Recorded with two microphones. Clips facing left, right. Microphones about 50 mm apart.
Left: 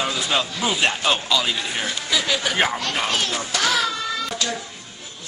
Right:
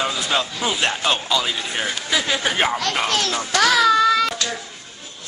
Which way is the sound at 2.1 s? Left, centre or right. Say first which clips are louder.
Right 1 dB; right.